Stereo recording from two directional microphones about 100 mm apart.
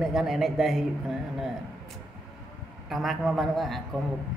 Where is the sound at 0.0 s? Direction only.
5° right (ahead or behind).